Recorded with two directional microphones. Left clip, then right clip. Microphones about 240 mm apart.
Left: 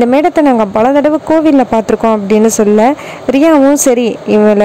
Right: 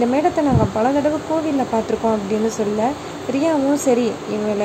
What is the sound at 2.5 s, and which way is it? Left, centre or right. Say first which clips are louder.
Speech: left 12 dB; left.